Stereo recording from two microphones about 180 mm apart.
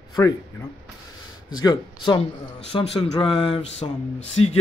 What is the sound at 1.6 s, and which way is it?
Speech, 25° left (ahead or behind).